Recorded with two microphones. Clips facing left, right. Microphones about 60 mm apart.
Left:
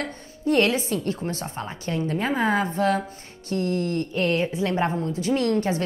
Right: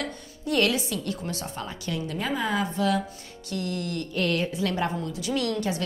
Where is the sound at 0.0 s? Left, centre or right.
Left.